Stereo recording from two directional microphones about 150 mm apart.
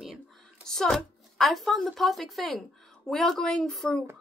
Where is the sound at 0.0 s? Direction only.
Centre (ahead or behind).